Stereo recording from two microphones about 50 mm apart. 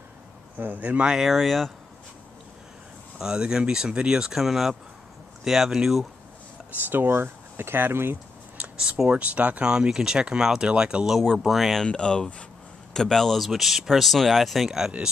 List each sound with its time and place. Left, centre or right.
0.6 s a man's voice: right
1.0 s speech: centre
3.2 s speech: centre
6.9 s speech: right
8.7 s speech: centre
11.3 s speech: centre
11.8 s speech: centre